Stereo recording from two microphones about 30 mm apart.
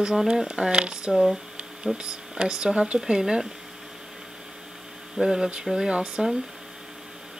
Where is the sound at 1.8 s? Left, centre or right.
Right.